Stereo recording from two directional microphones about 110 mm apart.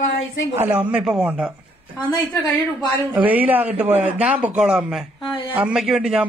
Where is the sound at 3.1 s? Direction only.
15° right (ahead or behind).